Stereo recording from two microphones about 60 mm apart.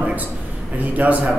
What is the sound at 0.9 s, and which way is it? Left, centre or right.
Speech, right.